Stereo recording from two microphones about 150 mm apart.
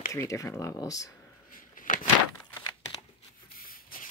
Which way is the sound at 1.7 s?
60° left (ahead or behind).